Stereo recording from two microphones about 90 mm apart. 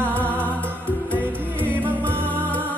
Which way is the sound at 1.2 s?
20° right (ahead or behind).